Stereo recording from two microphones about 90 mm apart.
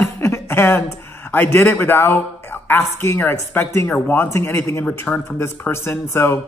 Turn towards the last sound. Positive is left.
turn(degrees=25)  # may be behind; listen again after turning